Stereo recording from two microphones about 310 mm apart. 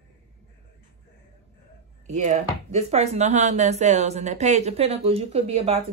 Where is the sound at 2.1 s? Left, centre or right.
Right.